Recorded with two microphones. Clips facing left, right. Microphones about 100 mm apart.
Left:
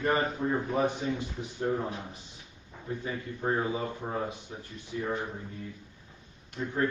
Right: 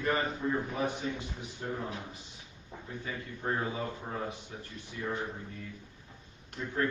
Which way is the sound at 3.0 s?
20° left (ahead or behind).